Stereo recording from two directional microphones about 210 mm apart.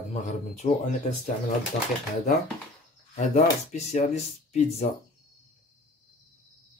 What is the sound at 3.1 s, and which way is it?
Speech, 35° left (ahead or behind).